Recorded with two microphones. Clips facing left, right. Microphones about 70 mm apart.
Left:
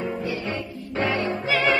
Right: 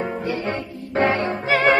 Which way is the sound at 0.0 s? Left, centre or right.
Right.